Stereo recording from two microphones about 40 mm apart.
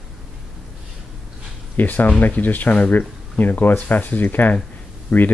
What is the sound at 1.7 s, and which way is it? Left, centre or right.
Speech, left.